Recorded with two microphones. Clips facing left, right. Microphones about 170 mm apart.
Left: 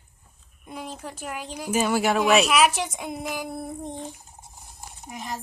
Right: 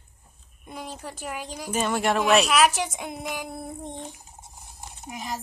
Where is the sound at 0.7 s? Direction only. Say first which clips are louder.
Left 1 dB; centre (ahead or behind).